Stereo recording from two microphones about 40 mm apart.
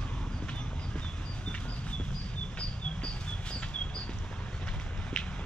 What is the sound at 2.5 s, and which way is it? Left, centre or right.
Bird, left.